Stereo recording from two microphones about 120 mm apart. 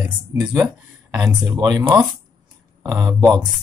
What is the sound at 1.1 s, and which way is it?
Speech, 30° right (ahead or behind).